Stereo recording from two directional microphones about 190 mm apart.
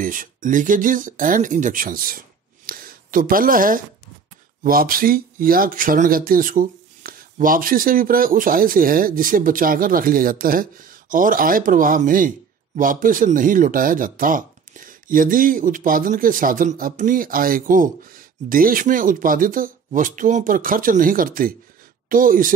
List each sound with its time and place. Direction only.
0.0 s speech: 45° right (ahead or behind)